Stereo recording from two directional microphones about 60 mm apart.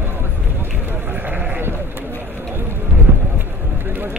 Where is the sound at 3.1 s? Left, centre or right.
Right.